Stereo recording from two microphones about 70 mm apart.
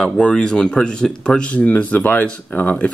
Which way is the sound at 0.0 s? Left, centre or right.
Centre.